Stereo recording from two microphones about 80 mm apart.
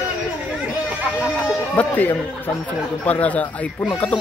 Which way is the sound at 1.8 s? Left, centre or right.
Left.